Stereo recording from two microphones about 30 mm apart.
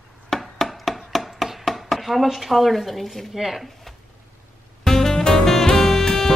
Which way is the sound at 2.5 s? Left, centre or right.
Centre.